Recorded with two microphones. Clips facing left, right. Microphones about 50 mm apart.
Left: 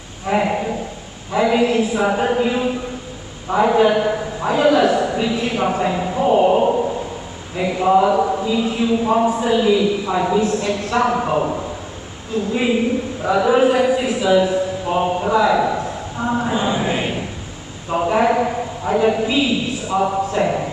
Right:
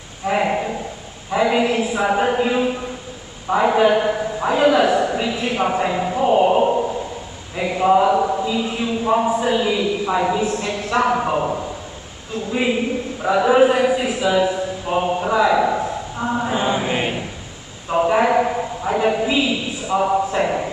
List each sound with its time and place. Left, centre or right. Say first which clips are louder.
0.3 s a man's voice: left 1 dB; centre
7.5 s chant: even; centre
9.2 s a man's voice: left 2 dB; centre
13.2 s a man's voice: right 1 dB; centre
16.3 s a sound: left 2 dB; centre
16.5 s chant: even; centre
16.9 s a sound: even; centre
17.9 s a man's voice: even; centre